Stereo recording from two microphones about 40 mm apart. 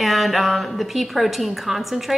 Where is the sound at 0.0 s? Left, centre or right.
Centre.